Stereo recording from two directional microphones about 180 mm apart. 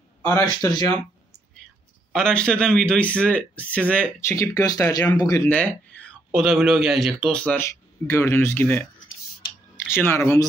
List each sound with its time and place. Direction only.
0.2 s a man's voice: 15° left (ahead or behind)
2.1 s a man's voice: 5° left (ahead or behind); by 5.5 s 20° left (ahead or behind)
5.5 s a man's voice: 10° left (ahead or behind)
10.0 s a man's voice: 15° left (ahead or behind)